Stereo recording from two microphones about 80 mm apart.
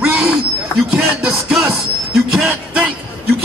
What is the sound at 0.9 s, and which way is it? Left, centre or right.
Music, centre.